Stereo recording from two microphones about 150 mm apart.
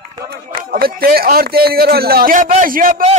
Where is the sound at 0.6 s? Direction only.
90° right; by 3.0 s 70° right (ahead or behind).